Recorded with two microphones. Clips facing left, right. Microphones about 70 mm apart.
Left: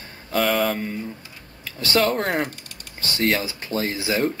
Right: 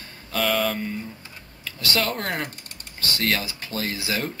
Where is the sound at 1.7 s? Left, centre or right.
Left.